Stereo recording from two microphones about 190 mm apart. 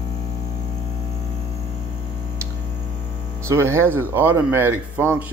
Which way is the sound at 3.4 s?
15° right (ahead or behind).